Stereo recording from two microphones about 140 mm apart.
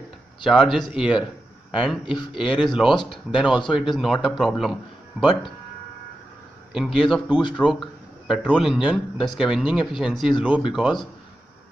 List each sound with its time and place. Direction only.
0.5 s a man's voice: centre (ahead or behind)
3.0 s speech: 40° left (ahead or behind)
3.3 s a man's voice: centre (ahead or behind)
6.7 s a man's voice: 5° right (ahead or behind)